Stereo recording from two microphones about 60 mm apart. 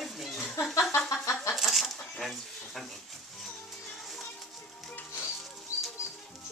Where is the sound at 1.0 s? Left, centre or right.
Left.